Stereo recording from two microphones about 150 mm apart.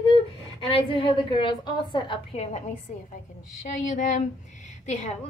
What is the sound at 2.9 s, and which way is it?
A woman's voice, 60° left (ahead or behind).